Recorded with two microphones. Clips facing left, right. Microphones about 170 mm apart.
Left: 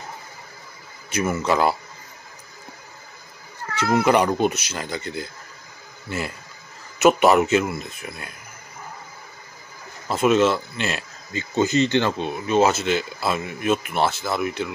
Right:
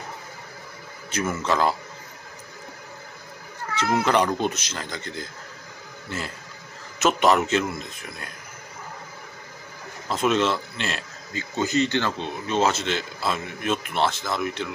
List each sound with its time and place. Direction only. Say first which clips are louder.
1.1 s speech: left 3 dB; 10° left (ahead or behind)
3.7 s speech: left 3 dB; 10° left (ahead or behind)
10.0 s speech: left 4 dB; 10° left (ahead or behind)
11.3 s speech: left 4 dB; 25° left (ahead or behind)
12.4 s speech: left 4 dB; 10° left (ahead or behind)